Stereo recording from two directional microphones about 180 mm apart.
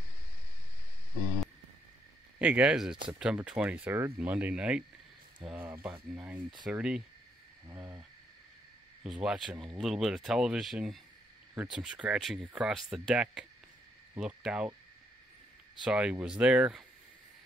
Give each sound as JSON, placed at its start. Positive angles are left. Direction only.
{"t": 2.3, "sound": "speech", "side_deg": -5}
{"t": 7.6, "sound": "speech", "side_deg": -15}
{"t": 9.0, "sound": "speech", "side_deg": -5}
{"t": 15.8, "sound": "speech", "side_deg": -5}